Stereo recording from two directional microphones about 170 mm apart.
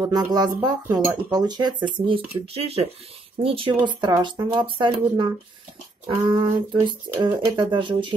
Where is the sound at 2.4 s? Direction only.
35° right (ahead or behind).